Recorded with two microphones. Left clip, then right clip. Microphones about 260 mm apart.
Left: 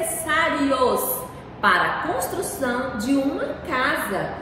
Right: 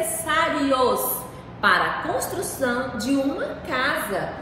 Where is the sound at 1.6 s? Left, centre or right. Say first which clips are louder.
Left 1 dB; centre.